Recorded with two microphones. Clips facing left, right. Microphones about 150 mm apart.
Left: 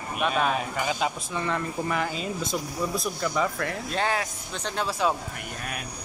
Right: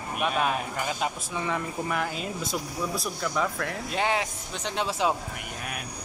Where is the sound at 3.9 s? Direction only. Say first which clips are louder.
Right 1 dB; 20° right (ahead or behind).